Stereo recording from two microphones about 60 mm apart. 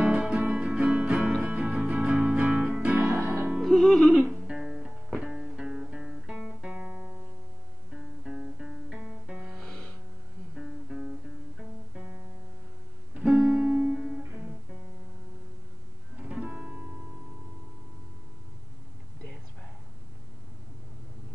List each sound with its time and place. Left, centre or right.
0.1 s music: centre
3.2 s music: right
3.6 s music: centre
4.5 s music: centre
13.4 s music: centre
16.2 s music: centre